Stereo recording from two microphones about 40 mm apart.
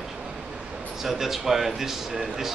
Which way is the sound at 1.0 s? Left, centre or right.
Centre.